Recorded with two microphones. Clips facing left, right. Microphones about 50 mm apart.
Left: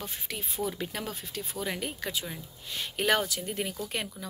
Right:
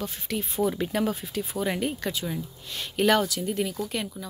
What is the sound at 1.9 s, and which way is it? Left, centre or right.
Speech, centre.